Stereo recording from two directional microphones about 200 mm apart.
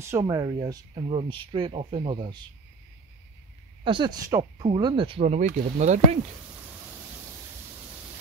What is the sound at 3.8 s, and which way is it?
Speech, 25° right (ahead or behind).